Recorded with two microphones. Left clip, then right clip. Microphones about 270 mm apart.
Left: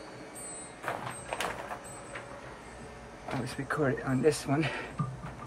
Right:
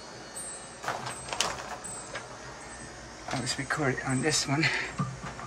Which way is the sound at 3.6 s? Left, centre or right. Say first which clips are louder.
Left 1 dB; centre.